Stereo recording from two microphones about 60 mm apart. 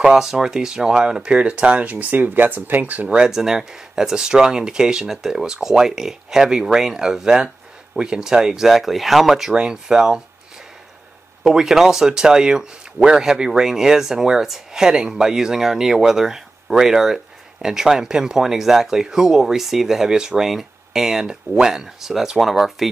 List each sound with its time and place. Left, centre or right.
0.0 s speech: centre; by 3.2 s right
3.2 s speech: centre
11.4 s speech: centre